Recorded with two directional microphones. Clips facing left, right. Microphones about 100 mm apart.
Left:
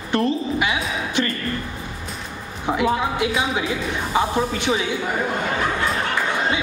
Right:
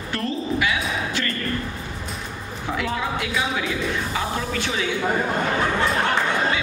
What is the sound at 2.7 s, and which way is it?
Speech, 20° left (ahead or behind).